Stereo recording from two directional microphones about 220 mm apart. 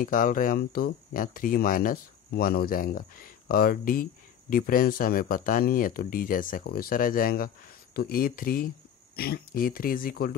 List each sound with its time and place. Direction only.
0.0 s speech: 40° left (ahead or behind)